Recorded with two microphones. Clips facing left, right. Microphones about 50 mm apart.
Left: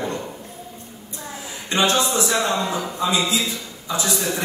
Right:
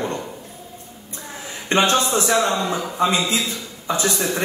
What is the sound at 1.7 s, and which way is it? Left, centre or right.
A man's voice, right.